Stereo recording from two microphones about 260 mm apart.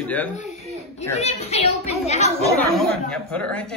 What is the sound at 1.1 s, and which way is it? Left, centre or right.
A child's voice, left.